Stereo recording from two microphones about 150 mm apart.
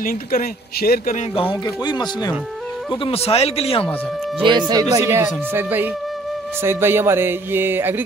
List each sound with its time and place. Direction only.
0.0 s speech: 70° left (ahead or behind)
1.3 s speech: 35° left (ahead or behind)
4.4 s speech: 30° right (ahead or behind)
4.9 s speech: 20° right (ahead or behind)